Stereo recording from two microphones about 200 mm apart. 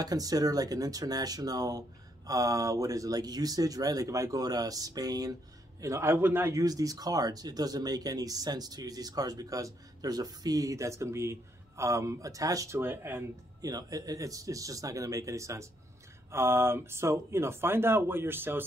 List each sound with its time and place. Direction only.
0.0 s speech: 20° right (ahead or behind)